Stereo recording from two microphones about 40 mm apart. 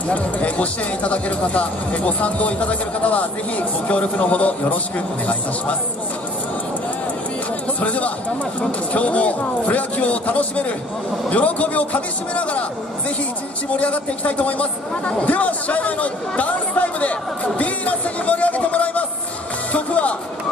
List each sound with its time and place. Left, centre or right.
0.1 s speech: left
7.8 s speech: left
13.7 s speech: left
19.7 s music: left